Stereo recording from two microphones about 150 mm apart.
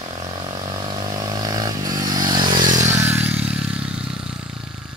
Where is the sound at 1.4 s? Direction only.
25° right (ahead or behind); by 4.4 s 5° right (ahead or behind).